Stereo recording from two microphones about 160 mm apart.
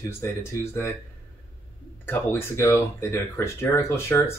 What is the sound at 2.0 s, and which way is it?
Speech, 15° left (ahead or behind).